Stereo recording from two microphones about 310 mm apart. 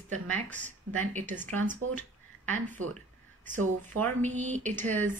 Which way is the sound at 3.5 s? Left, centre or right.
Right.